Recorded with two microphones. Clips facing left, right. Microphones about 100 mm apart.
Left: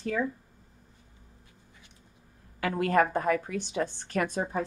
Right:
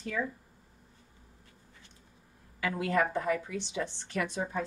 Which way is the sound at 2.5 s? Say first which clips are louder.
Left 4 dB; 50° left (ahead or behind).